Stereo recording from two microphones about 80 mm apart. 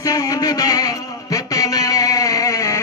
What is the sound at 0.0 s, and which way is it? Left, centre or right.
Music, left.